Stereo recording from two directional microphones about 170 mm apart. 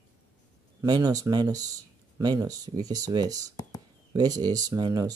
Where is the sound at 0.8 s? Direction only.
25° right (ahead or behind).